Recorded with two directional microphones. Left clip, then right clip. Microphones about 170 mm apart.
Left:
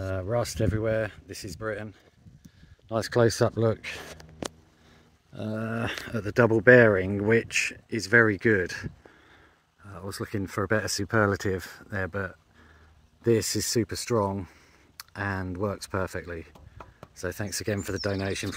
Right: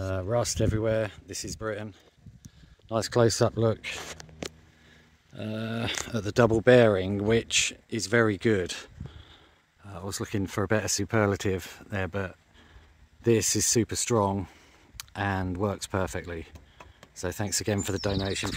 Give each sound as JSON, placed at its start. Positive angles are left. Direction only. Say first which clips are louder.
{"t": 0.3, "sound": "speech", "louder": "right 1 dB", "side_deg": -40}
{"t": 2.9, "sound": "speech", "louder": "even", "side_deg": -5}
{"t": 5.5, "sound": "speech", "louder": "left 1 dB", "side_deg": -15}
{"t": 6.1, "sound": "speech", "louder": "left 1 dB", "side_deg": -30}
{"t": 6.6, "sound": "speech", "louder": "left 3 dB", "side_deg": -15}
{"t": 9.8, "sound": "speech", "louder": "right 1 dB", "side_deg": -25}
{"t": 18.1, "sound": "speech", "louder": "even", "side_deg": 0}